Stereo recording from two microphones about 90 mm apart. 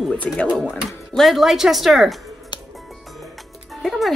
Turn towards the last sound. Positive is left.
turn(degrees=0)  # may be behind; listen again after turning